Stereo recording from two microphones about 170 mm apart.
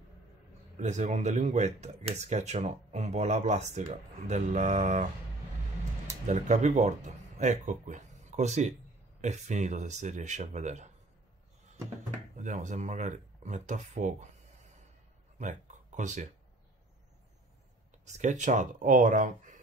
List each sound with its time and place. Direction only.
0.7 s speech: 45° right (ahead or behind)
6.2 s speech: 45° right (ahead or behind)
12.4 s speech: 45° right (ahead or behind)
15.3 s a sound: 45° right (ahead or behind)
18.0 s speech: 45° right (ahead or behind)